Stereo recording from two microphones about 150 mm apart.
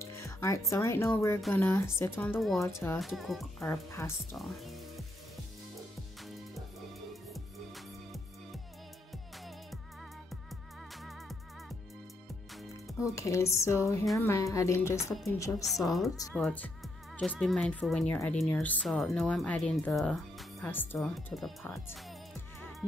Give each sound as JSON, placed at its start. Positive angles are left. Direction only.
{"t": 0.0, "sound": "a woman's voice", "side_deg": 20}
{"t": 3.0, "sound": "speech", "side_deg": 0}
{"t": 3.9, "sound": "speech", "side_deg": 20}
{"t": 4.4, "sound": "speech", "side_deg": 0}
{"t": 7.3, "sound": "music", "side_deg": 0}
{"t": 13.0, "sound": "a woman's voice", "side_deg": 20}
{"t": 15.6, "sound": "speech", "side_deg": 0}
{"t": 20.6, "sound": "speech", "side_deg": 15}
{"t": 21.0, "sound": "speech", "side_deg": 0}